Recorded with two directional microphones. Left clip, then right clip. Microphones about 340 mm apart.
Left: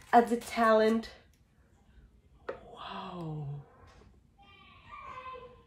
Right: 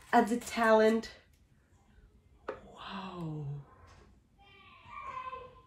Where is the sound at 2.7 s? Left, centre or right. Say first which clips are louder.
Left 2 dB; centre.